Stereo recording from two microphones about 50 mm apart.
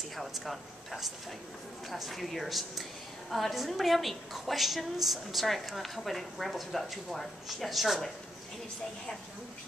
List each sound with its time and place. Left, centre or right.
0.1 s a woman's voice: centre